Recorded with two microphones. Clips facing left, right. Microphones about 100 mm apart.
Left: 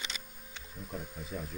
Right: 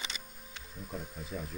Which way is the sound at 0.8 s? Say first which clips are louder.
Even; centre (ahead or behind).